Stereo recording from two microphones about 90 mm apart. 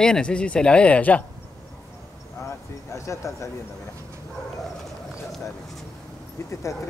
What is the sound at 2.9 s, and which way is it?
Speech, 35° left (ahead or behind).